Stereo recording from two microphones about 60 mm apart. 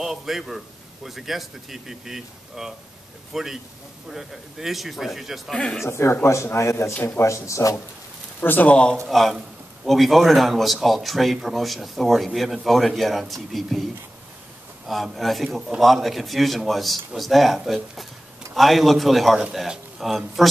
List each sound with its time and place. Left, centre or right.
0.0 s speech: centre
5.9 s a man's voice: left
8.4 s speech: left
8.6 s a man's voice: centre
9.1 s speech: centre
14.9 s speech: centre